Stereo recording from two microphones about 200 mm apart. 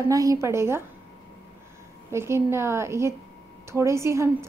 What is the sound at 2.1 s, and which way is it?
A woman's voice, 15° right (ahead or behind).